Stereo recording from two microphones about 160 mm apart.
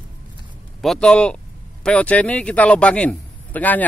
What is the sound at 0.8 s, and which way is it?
Speech, 5° left (ahead or behind).